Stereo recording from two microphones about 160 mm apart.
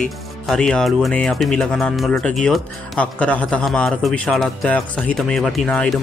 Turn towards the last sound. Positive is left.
turn(degrees=5)  # may be behind; listen again after turning